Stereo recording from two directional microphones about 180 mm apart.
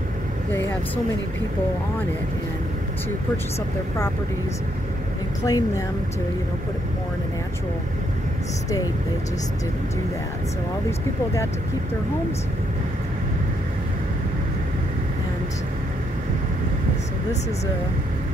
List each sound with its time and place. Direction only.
5.4 s speech: 20° left (ahead or behind)